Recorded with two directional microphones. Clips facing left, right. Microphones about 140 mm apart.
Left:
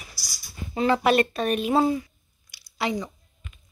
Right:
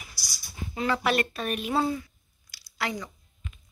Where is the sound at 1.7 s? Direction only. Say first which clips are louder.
Left 5 dB; 20° left (ahead or behind).